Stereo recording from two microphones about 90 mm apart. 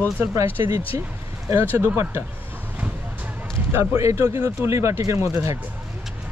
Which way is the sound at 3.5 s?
30° right (ahead or behind).